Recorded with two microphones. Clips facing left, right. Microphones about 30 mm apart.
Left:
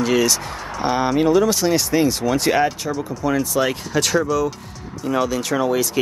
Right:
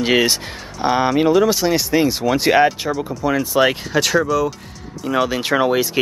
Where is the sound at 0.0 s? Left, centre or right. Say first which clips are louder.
Right 2 dB; right.